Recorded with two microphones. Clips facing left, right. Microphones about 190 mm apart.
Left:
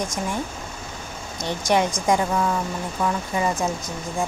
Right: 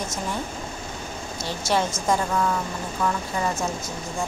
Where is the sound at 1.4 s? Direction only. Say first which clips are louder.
Left 3 dB; 15° left (ahead or behind).